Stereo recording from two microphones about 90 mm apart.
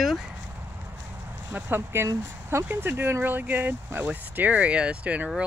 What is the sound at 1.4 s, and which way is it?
Speech, 20° right (ahead or behind).